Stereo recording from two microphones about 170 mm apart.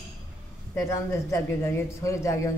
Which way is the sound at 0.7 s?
15° left (ahead or behind).